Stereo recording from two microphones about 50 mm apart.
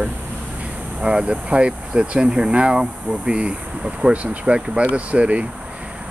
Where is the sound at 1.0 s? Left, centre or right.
Centre.